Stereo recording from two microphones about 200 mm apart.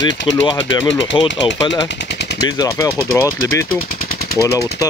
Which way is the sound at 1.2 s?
25° left (ahead or behind).